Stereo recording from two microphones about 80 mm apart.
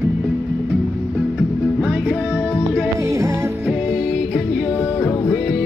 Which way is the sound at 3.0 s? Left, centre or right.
Right.